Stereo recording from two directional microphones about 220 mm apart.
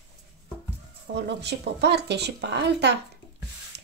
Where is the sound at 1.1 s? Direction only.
50° right (ahead or behind).